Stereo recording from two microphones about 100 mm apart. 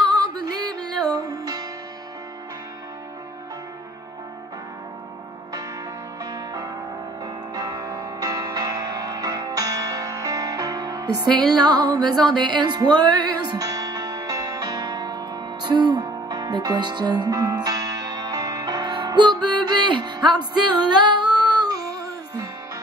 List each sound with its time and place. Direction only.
0.1 s music: 45° right (ahead or behind)
7.5 s music: 40° right (ahead or behind)
20.9 s humming: 50° right (ahead or behind)
21.5 s music: 45° right (ahead or behind)